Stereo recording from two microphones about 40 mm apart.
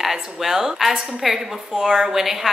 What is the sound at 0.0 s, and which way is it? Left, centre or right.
A woman's voice, centre.